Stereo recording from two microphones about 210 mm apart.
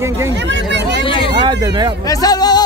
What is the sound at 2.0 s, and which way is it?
Speech, 15° left (ahead or behind).